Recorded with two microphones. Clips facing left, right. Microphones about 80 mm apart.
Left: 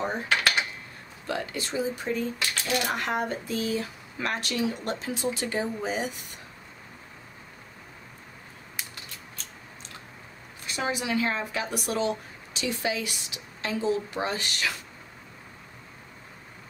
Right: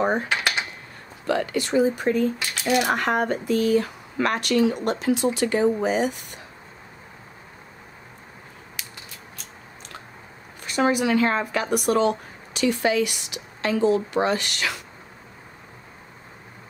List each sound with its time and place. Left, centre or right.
0.3 s dishes: centre
1.2 s speech: right
10.6 s speech: right